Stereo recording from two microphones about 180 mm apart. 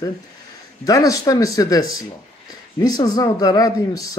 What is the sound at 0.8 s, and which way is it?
Speech, 20° left (ahead or behind).